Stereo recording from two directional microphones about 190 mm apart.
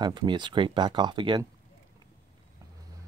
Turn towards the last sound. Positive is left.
turn(degrees=-25)  # may be behind; listen again after turning